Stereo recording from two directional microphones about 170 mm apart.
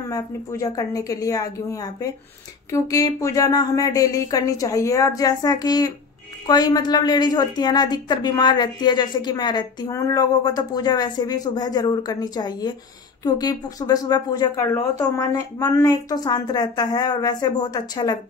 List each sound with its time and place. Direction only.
0.1 s a woman's voice: 20° left (ahead or behind)